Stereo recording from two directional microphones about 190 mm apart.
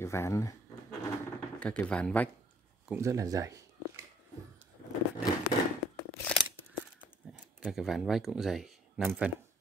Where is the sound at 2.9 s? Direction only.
15° right (ahead or behind).